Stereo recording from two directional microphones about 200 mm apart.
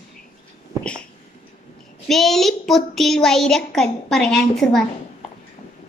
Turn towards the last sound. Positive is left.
turn(degrees=5)  # may be behind; listen again after turning